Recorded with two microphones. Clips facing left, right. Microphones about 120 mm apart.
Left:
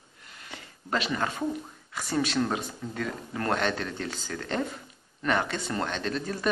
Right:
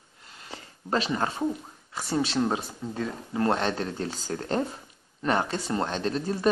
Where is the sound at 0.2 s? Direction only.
30° right (ahead or behind).